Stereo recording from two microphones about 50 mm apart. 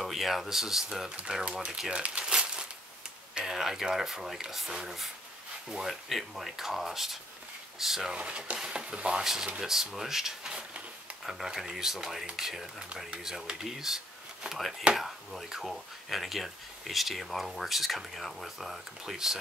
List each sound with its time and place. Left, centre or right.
0.0 s speech: centre
1.9 s crumpling: right
3.4 s speech: centre
8.1 s speech: right
9.2 s speech: centre